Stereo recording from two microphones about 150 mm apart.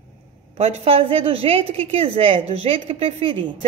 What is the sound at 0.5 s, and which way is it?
A woman's voice, 45° right (ahead or behind).